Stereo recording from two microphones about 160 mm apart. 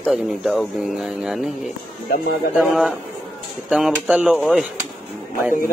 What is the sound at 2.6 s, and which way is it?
Speech, centre (ahead or behind).